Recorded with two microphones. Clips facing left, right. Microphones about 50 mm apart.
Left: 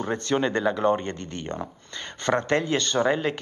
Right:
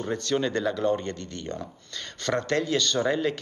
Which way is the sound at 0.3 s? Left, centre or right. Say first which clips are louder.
Left 3 dB; left.